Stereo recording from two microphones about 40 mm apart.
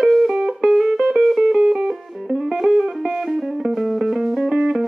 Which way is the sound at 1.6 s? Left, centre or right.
Right.